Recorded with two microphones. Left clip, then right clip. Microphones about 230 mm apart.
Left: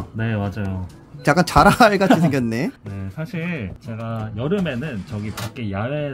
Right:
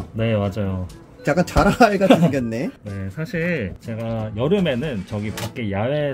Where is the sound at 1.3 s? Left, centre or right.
Left.